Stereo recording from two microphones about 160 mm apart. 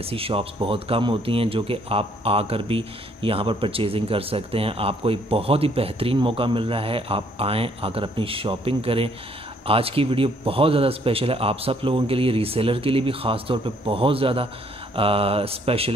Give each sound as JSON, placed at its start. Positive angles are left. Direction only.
{"t": 0.0, "sound": "speech", "side_deg": -35}